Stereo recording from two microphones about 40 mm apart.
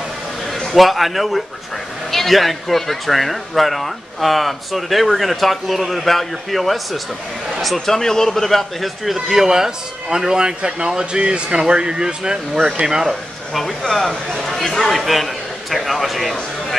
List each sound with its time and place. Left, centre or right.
0.7 s a man's voice: centre
13.1 s a man's voice: centre